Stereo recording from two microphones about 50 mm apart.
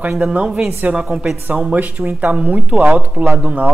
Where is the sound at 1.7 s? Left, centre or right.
Right.